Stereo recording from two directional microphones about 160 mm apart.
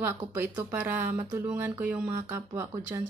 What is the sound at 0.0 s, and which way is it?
A woman's voice, 15° right (ahead or behind).